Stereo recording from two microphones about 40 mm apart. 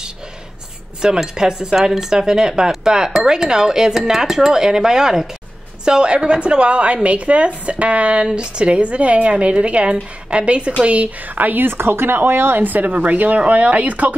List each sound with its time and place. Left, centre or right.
1.0 s a woman's voice: centre; by 11.6 s right
11.6 s a woman's voice: right